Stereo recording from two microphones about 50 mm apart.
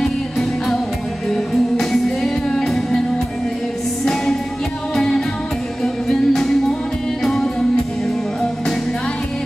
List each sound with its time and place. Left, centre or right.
0.0 s music: centre
4.0 s music: centre